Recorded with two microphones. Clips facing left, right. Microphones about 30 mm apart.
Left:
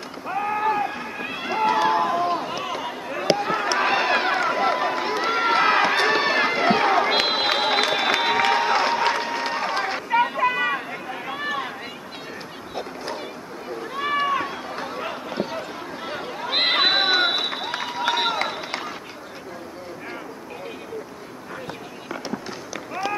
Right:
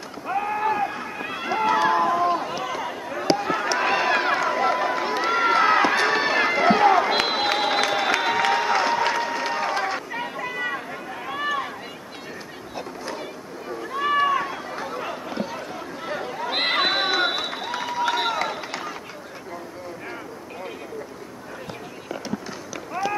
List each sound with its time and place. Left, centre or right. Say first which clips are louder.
0.3 s run: left 1 dB; centre; by 10.5 s left
10.5 s chatter: left 4 dB; left
11.1 s run: right 3 dB; centre
13.9 s run: right 2 dB; centre
17.6 s a sound: even; left
23.0 s run: right 1 dB; centre